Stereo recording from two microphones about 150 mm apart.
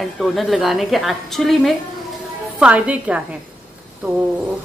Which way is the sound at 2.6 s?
10° right (ahead or behind).